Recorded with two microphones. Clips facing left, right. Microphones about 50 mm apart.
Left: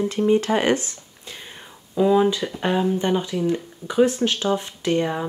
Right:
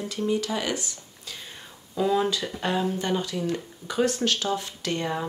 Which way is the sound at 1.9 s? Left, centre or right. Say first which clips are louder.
Left 6 dB; centre.